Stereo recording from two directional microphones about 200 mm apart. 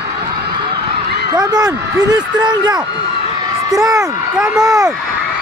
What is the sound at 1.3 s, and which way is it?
A man's voice, 20° right (ahead or behind).